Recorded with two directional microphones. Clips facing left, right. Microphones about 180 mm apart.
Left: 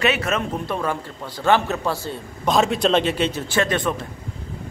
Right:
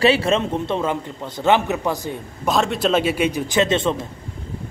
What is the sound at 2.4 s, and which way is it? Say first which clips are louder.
A man's voice: left 1 dB; centre (ahead or behind).